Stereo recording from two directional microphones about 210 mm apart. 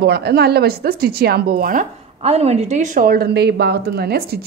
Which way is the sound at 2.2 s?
30° right (ahead or behind).